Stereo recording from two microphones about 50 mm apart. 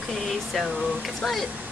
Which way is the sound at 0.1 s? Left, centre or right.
Centre.